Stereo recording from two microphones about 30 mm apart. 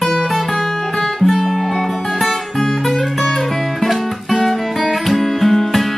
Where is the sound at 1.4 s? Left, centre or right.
Centre.